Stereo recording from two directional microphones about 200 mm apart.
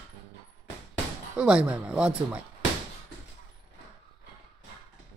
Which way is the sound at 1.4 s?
5° right (ahead or behind).